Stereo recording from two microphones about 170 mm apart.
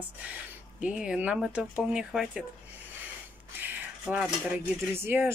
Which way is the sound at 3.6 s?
10° right (ahead or behind).